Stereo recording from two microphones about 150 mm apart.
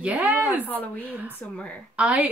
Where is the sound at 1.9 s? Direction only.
5° right (ahead or behind).